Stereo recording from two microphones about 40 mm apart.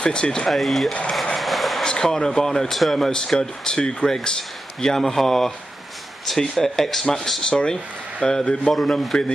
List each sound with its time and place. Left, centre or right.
0.0 s speech: left
0.5 s speech: centre
1.3 s vehicle: centre
1.9 s a man's voice: centre
3.1 s a man's voice: centre
7.4 s a man's voice: left